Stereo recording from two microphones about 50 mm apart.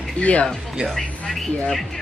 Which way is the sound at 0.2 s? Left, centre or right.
Left.